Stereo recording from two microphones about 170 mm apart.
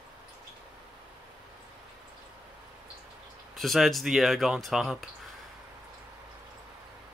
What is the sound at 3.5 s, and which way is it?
Speech, centre (ahead or behind).